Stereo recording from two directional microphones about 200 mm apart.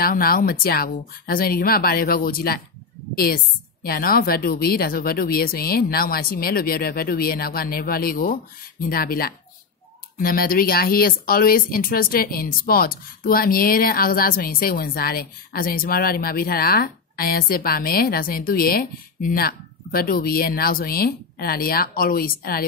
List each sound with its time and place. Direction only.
0.0 s speech: 45° left (ahead or behind)
3.8 s speech: 45° left (ahead or behind)